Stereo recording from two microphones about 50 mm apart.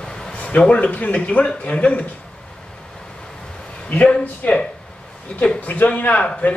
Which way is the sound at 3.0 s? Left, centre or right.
Centre.